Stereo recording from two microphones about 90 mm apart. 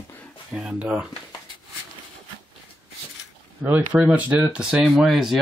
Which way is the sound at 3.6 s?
15° right (ahead or behind).